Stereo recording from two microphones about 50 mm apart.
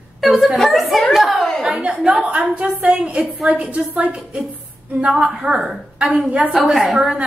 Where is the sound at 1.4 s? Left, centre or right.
Centre.